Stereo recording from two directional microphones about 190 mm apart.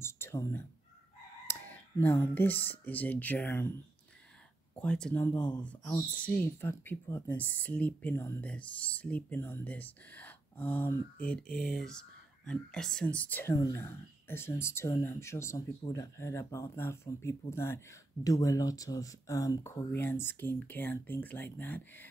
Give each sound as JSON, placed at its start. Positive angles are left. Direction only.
{"t": 0.0, "sound": "speech", "side_deg": 15}